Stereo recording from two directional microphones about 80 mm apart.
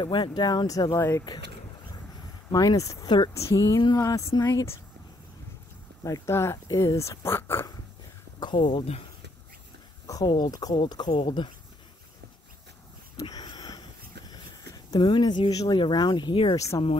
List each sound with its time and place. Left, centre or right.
0.0 s speech: left
2.5 s speech: left
6.0 s speech: left
8.4 s speech: left
10.0 s speech: left
13.3 s a sound: left
15.0 s speech: left
15.5 s speech: left
15.8 s speech: left
16.5 s speech: left